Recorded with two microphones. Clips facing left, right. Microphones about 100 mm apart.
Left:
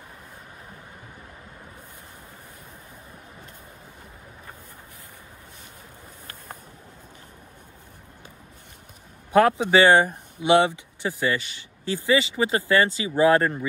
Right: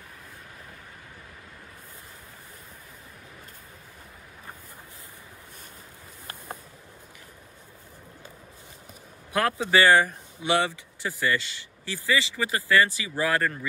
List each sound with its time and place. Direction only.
9.3 s speech: 20° left (ahead or behind)